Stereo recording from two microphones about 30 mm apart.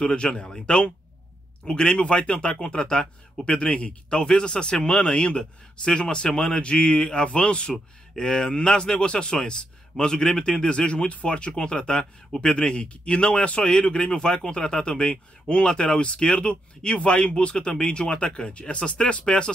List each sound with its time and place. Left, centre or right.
0.0 s speech: left
5.4 s speech: left
6.5 s speech: left
7.0 s speech: left
7.2 s speech: left; by 9.0 s centre
9.0 s speech: left
11.9 s speech: centre
12.4 s speech: left